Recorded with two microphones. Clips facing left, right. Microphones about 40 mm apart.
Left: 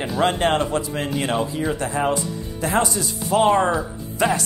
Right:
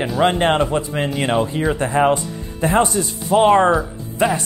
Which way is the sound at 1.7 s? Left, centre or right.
Right.